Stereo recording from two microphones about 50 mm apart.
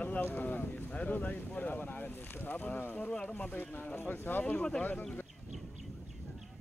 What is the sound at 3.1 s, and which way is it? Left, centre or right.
Speech, centre.